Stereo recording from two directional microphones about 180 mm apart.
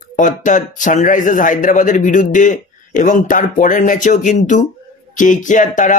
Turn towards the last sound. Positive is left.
turn(degrees=45)  # may be behind; listen again after turning